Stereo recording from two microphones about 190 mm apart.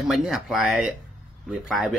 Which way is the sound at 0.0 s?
Centre (ahead or behind).